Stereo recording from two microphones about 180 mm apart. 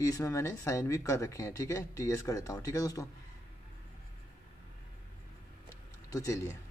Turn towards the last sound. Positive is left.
turn(degrees=15)  # may be behind; listen again after turning